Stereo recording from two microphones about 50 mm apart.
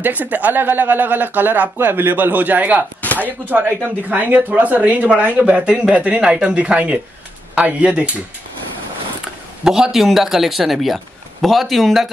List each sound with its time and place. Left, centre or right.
0.0 s speech: right
9.7 s a man's voice: centre